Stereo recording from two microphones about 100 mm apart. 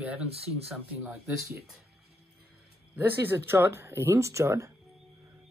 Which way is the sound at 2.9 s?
20° right (ahead or behind).